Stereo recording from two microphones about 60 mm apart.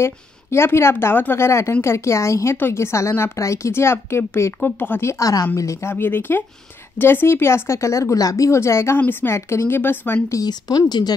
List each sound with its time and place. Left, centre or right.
0.0 s a woman's voice: left
5.0 s a woman's voice: left
5.6 s speech: left
5.9 s a woman's voice: left
8.5 s a woman's voice: left
8.9 s speech: left
10.3 s speech: left